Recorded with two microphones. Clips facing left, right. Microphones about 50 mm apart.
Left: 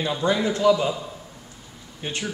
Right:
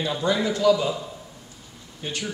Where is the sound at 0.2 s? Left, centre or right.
Centre.